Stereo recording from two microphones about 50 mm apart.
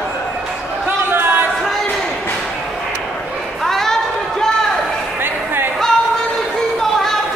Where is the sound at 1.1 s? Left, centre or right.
Right.